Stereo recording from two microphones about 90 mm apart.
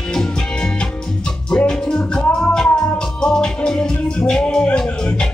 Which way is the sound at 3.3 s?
10° left (ahead or behind).